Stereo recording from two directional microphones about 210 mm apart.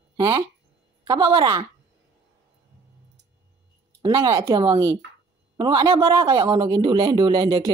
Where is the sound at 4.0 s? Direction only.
20° right (ahead or behind).